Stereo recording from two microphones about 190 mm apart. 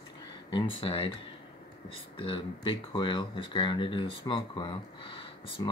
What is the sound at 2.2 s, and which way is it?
Speech, 25° left (ahead or behind).